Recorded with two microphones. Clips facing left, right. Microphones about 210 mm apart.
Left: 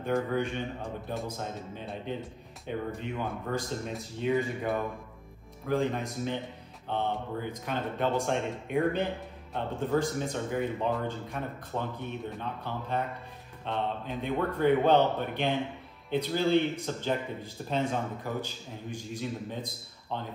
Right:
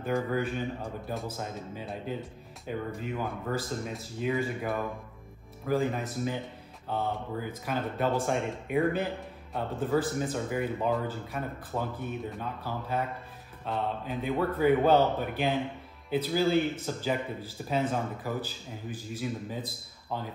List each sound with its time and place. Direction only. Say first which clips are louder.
0.0 s speech: even; centre (ahead or behind)